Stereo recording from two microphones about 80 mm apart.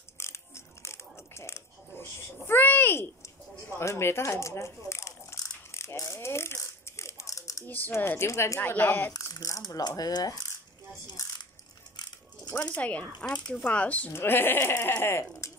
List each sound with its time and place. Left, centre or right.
0.2 s a sound: left
7.6 s speech: left
8.5 s speech: left
9.1 s speech: left
12.0 s coin: left
12.5 s speech: centre
14.1 s speech: left